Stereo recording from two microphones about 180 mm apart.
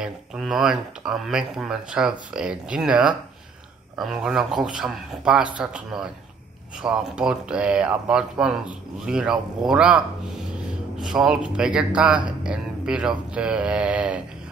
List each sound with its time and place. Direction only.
0.0 s speech: 5° right (ahead or behind)